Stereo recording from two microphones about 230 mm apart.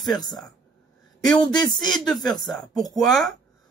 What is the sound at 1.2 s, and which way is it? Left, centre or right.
Speech, centre.